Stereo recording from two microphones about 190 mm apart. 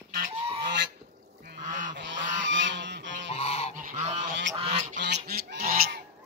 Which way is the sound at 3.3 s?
30° left (ahead or behind).